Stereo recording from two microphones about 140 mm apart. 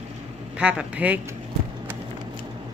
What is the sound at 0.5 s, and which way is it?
Speech, 10° right (ahead or behind).